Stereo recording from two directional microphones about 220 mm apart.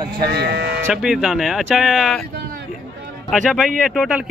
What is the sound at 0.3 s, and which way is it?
Speech, 50° right (ahead or behind).